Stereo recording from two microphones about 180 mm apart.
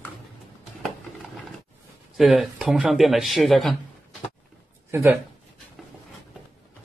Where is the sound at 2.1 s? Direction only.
Centre (ahead or behind).